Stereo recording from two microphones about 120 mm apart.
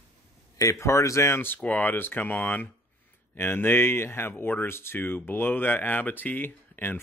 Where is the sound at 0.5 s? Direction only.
25° left (ahead or behind).